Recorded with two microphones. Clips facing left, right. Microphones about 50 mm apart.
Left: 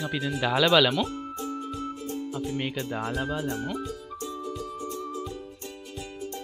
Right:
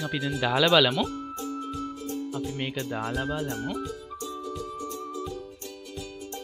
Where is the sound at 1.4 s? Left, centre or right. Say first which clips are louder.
Even; left.